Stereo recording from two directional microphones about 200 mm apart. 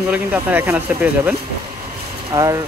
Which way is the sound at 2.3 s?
20° right (ahead or behind).